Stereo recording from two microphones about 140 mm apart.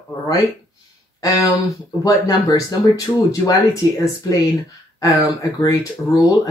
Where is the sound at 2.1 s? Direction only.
25° left (ahead or behind).